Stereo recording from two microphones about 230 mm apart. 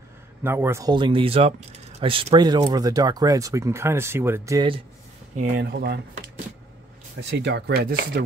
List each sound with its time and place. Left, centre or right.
0.4 s speech: centre
5.6 s speech: right
7.2 s speech: right